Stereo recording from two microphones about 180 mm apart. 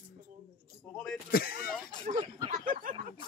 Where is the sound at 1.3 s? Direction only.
55° left (ahead or behind).